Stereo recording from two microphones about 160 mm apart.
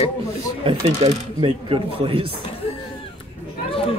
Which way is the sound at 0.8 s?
25° right (ahead or behind).